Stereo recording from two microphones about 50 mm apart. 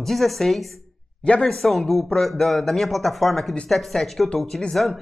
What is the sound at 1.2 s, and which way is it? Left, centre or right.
Speech, left.